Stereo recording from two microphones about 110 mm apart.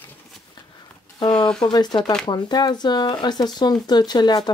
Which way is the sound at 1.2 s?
40° left (ahead or behind).